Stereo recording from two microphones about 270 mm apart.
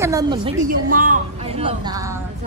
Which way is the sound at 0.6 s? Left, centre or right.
Right.